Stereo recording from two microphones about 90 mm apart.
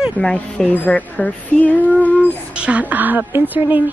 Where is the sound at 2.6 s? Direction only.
15° right (ahead or behind).